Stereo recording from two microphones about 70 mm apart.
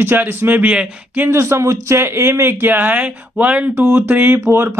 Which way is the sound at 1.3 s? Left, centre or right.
Right.